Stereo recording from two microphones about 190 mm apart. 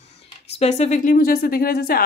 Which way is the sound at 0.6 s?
35° left (ahead or behind).